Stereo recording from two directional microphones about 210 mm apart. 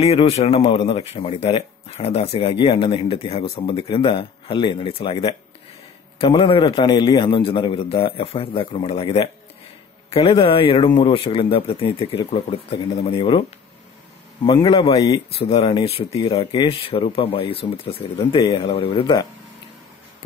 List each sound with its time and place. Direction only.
0.0 s speech: 30° left (ahead or behind)
14.4 s speech: 25° left (ahead or behind)